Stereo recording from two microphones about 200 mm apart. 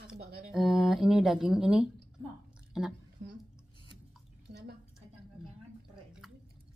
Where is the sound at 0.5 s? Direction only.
Centre (ahead or behind).